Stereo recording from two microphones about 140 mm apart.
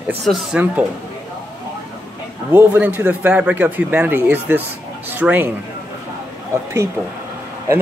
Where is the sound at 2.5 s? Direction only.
15° right (ahead or behind).